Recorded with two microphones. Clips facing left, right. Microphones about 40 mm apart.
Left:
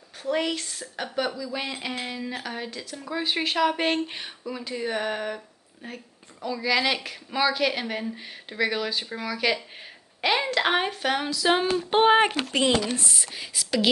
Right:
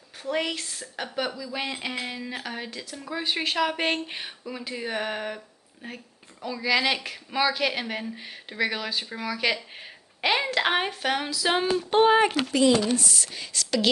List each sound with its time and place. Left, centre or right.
0.2 s a woman's voice: centre
11.9 s speech: left